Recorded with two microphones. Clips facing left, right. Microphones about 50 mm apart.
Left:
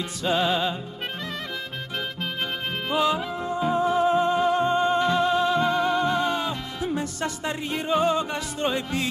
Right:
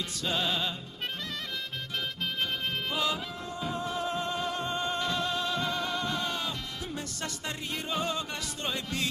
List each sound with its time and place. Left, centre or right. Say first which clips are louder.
0.2 s music: left 8 dB; centre
2.9 s music: left 11 dB; centre